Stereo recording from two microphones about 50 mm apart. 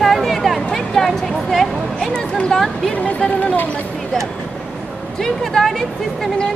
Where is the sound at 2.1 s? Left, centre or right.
Centre.